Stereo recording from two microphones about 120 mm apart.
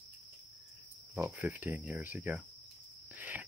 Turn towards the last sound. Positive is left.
turn(degrees=-15)  # may be behind; listen again after turning